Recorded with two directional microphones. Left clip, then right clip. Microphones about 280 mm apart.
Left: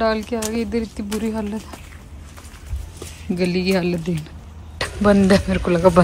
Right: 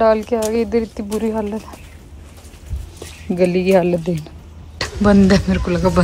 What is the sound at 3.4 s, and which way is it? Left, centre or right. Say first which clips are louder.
Speech: right 7 dB; centre.